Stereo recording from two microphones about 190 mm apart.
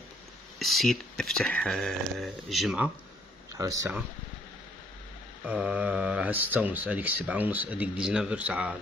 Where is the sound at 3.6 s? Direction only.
15° right (ahead or behind).